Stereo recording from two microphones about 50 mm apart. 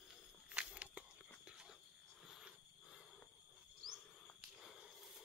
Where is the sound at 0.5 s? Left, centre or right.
Right.